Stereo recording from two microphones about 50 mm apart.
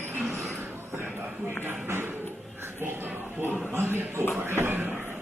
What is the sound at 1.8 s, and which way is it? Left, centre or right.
Music, right.